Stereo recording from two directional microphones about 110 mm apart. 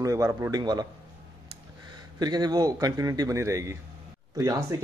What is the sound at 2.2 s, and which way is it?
Speech, 40° right (ahead or behind).